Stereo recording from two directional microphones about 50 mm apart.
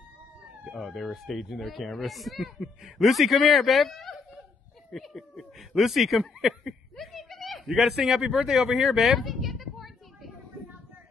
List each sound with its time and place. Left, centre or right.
0.7 s speech: centre
5.7 s snicker: centre